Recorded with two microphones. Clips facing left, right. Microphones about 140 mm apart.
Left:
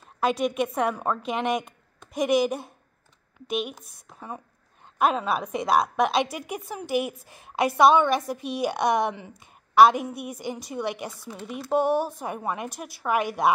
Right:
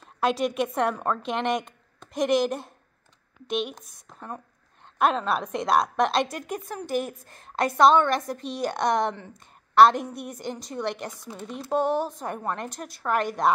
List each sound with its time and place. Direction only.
0.0 s a woman's voice: centre (ahead or behind)